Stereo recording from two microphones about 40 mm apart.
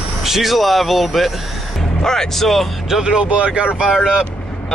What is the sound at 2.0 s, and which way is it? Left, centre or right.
Speech, centre.